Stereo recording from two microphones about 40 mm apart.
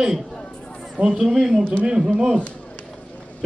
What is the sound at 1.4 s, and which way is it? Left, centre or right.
Speech, centre.